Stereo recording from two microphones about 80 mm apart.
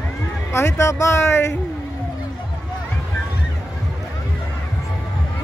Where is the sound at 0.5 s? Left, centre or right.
Left.